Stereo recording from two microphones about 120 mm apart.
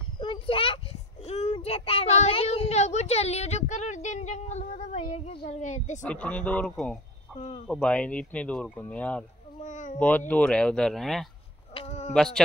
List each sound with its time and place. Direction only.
0.2 s a sound: 45° left (ahead or behind)
1.2 s a child's voice: 60° left (ahead or behind)
5.5 s a woman's voice: 85° left
6.0 s speech: 10° left (ahead or behind)
7.3 s speech: 70° left (ahead or behind)
7.8 s speech: 10° left (ahead or behind)
9.6 s a sound: 90° left
9.9 s speech: 15° left (ahead or behind)
11.7 s a sound: 55° left (ahead or behind)
12.1 s speech: 5° left (ahead or behind)